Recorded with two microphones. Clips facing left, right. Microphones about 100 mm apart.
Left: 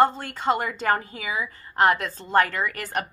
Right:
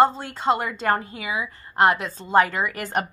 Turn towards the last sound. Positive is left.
turn(degrees=-15)  # may be behind; listen again after turning